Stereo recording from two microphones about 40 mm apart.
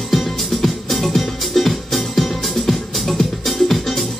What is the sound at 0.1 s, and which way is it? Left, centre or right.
Music, centre.